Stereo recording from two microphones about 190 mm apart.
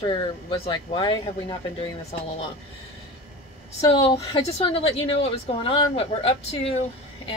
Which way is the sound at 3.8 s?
30° left (ahead or behind).